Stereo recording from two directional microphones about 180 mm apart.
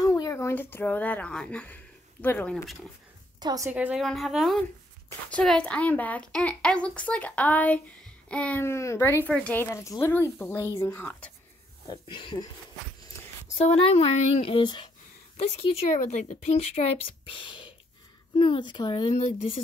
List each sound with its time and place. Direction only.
0.0 s a woman's voice: 20° left (ahead or behind); by 2.9 s centre (ahead or behind)
3.3 s a woman's voice: 20° right (ahead or behind)
3.7 s a woman's voice: 5° right (ahead or behind)
11.9 s a woman's voice: 25° left (ahead or behind)
13.6 s speech: 35° left (ahead or behind)
15.3 s a woman's voice: 40° left (ahead or behind)